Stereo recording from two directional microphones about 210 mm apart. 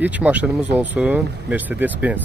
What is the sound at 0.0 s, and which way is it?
Speech, 5° right (ahead or behind).